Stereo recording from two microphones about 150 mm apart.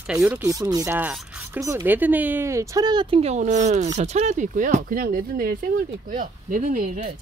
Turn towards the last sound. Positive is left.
turn(degrees=-60)  # may be behind; listen again after turning